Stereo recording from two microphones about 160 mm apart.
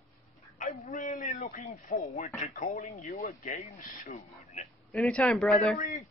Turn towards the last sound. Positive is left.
turn(degrees=50)  # may be behind; listen again after turning